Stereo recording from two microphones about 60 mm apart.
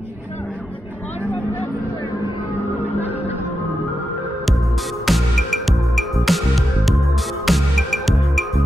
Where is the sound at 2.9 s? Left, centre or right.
Right.